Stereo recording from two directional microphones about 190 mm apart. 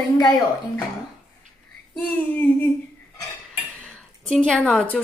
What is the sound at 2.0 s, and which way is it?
Child singing, 10° left (ahead or behind).